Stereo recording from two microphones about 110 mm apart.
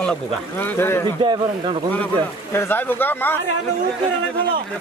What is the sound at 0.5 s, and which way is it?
Speech, 20° left (ahead or behind).